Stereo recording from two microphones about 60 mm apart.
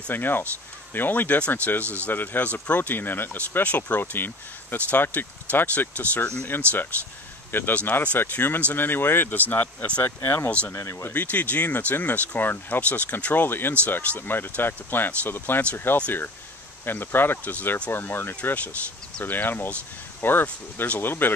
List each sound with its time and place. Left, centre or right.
0.1 s speech: left
7.7 s speech: left
10.7 s speech: left
11.1 s speech: left